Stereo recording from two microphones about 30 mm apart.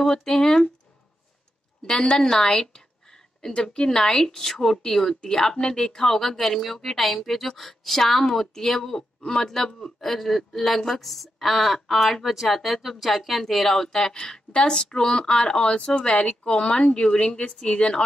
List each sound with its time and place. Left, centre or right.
0.0 s speech: centre
1.9 s a woman's voice: left
9.9 s a woman's voice: centre
14.5 s speech: left